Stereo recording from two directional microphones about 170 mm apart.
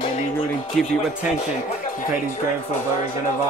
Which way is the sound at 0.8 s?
Centre (ahead or behind).